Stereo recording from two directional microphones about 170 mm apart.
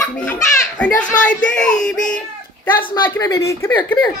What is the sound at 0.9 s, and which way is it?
Speech, 50° left (ahead or behind).